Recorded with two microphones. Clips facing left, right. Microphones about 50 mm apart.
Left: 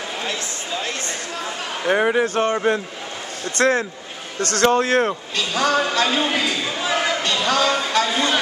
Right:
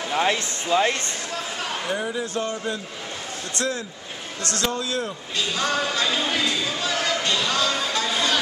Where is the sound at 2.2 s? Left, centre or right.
Left.